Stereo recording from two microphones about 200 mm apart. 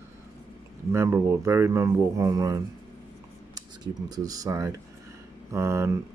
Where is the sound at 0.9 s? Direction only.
15° right (ahead or behind).